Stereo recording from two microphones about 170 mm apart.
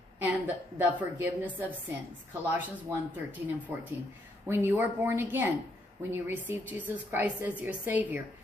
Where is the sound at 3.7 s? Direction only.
10° right (ahead or behind).